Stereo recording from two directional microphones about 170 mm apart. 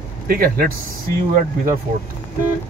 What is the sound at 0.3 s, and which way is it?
Speech, 60° right (ahead or behind).